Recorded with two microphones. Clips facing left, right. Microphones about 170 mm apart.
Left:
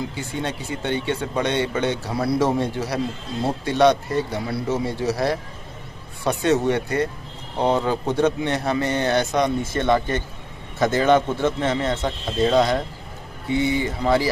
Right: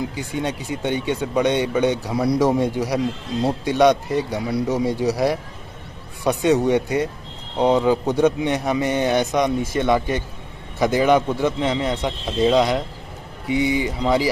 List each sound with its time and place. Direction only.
0.1 s a man's voice: 15° right (ahead or behind)